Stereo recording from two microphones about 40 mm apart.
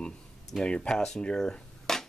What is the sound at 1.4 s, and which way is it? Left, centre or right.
Dishes, centre.